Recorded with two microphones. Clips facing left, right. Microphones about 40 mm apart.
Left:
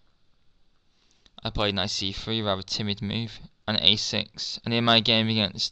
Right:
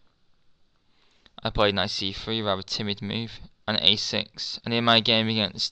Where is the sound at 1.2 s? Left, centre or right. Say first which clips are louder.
Right 5 dB; centre.